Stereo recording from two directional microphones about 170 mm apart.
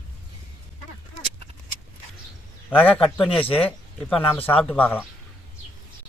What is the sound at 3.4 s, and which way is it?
Speech, 35° left (ahead or behind).